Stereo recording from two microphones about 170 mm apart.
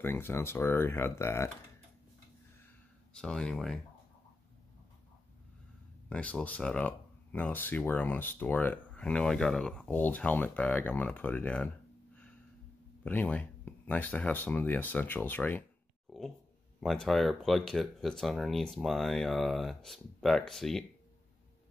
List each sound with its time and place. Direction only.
0.0 s speech: 15° left (ahead or behind)
3.1 s speech: 5° left (ahead or behind)
6.0 s speech: 10° left (ahead or behind)
13.0 s speech: 10° left (ahead or behind)
16.1 s a sound: centre (ahead or behind)
16.8 s speech: centre (ahead or behind)